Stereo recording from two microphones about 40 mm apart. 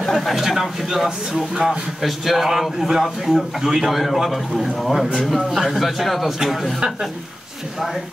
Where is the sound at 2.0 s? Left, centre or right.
Centre.